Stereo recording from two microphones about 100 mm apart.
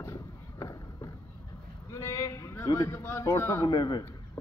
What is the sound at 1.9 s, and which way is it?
A man's voice, 30° left (ahead or behind).